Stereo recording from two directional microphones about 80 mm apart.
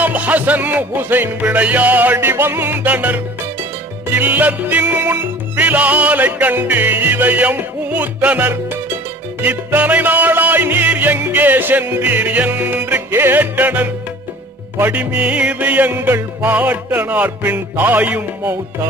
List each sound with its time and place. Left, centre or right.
0.0 s music: centre